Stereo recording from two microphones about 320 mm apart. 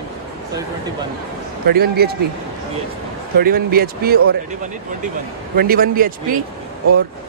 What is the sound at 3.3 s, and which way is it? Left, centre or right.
Speech, right.